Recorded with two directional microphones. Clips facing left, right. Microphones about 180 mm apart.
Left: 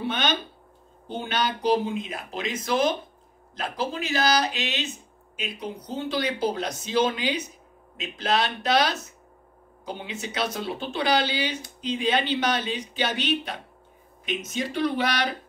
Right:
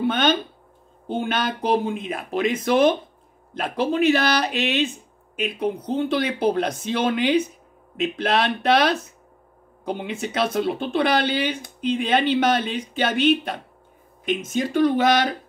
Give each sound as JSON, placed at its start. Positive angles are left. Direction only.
{"t": 0.0, "sound": "speech", "side_deg": -50}